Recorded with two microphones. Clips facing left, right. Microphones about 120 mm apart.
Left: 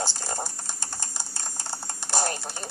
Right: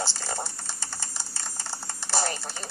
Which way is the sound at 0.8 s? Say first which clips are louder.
Left 1 dB; 50° left (ahead or behind).